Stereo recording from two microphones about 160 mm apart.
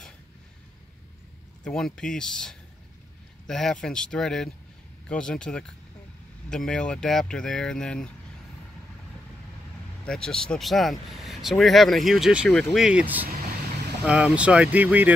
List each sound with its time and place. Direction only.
1.6 s speech: 5° left (ahead or behind)
10.0 s speech: 5° left (ahead or behind)